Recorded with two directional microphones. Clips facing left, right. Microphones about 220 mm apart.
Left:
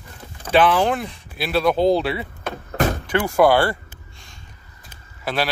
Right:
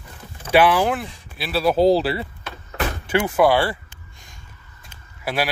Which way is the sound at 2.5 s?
50° left (ahead or behind).